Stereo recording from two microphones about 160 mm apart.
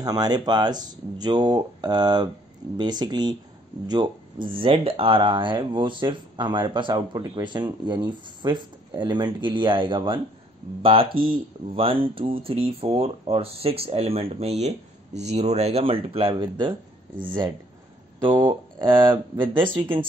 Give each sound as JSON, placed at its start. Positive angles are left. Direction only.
{"t": 0.0, "sound": "speech", "side_deg": -25}